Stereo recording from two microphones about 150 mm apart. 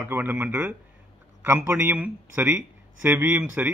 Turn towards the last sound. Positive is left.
turn(degrees=-10)  # may be behind; listen again after turning